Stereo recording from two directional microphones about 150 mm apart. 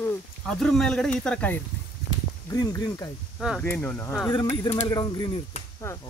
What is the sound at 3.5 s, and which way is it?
Speech, 10° left (ahead or behind).